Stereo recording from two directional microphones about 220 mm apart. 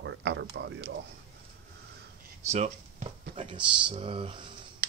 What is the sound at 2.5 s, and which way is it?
Speech, 30° right (ahead or behind).